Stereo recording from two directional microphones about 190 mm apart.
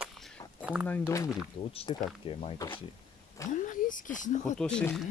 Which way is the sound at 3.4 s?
45° left (ahead or behind).